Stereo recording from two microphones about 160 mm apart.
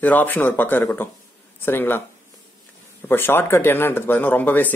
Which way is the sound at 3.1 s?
15° left (ahead or behind).